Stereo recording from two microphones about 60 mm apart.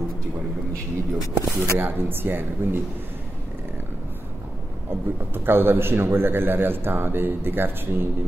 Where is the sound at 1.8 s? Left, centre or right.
Right.